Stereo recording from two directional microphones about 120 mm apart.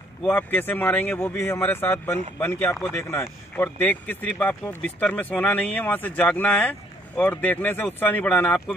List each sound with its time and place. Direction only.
0.2 s speech: 15° left (ahead or behind)